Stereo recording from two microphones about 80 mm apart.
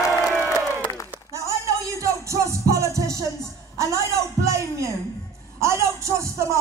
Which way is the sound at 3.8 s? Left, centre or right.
Right.